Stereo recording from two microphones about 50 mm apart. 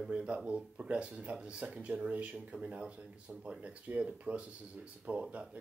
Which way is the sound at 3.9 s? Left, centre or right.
Right.